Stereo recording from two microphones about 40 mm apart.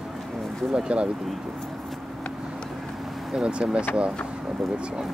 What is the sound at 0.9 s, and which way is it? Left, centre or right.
Speech, right.